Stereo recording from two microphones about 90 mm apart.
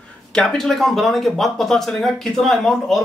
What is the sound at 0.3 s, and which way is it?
Speech, 5° left (ahead or behind).